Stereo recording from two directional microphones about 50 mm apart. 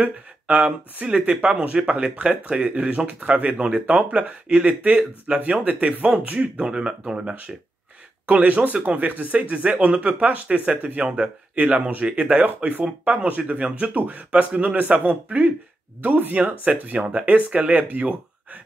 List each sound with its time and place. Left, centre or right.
0.0 s speech: right
8.3 s speech: right